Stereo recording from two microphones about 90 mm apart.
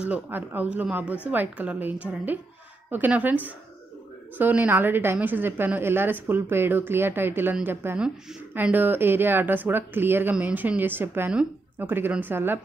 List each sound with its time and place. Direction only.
0.0 s a woman's voice: 20° right (ahead or behind)